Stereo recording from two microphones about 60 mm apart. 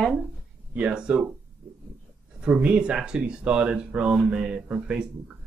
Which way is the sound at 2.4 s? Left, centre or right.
Centre.